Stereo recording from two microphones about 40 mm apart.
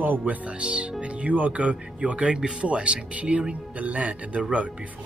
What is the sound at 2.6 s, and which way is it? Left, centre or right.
Speech, right.